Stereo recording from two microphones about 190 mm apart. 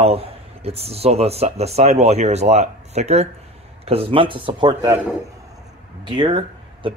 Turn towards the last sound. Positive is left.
turn(degrees=-25)  # may be behind; listen again after turning